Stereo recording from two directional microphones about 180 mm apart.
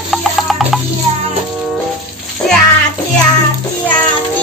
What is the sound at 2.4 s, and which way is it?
Music, 20° left (ahead or behind).